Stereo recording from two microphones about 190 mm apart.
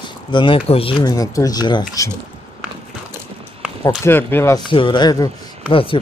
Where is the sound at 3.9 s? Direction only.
10° left (ahead or behind).